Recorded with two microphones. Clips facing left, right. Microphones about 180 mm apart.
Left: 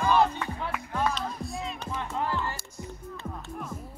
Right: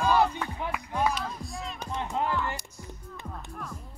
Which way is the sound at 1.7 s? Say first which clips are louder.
Right 5 dB; 15° right (ahead or behind).